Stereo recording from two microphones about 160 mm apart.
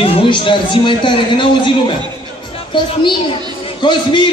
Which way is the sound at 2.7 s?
30° left (ahead or behind).